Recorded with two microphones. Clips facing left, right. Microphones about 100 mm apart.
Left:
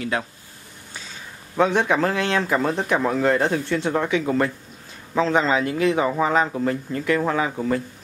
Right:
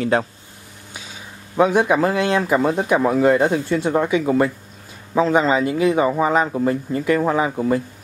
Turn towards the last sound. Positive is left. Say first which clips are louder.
# right 4 dB
turn(degrees=-10)  # may be behind; listen again after turning